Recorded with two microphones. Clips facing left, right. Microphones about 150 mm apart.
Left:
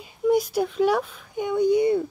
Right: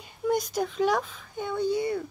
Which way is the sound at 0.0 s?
5° left (ahead or behind).